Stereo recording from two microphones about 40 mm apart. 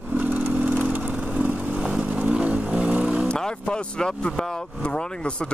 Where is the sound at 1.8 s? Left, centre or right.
Right.